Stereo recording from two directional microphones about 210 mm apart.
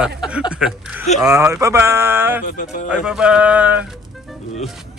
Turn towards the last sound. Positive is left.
turn(degrees=0)  # may be behind; listen again after turning